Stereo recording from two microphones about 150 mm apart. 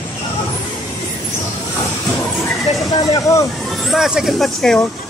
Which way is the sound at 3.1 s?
20° left (ahead or behind).